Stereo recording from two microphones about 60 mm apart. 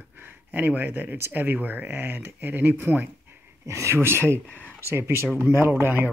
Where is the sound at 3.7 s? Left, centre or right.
Right.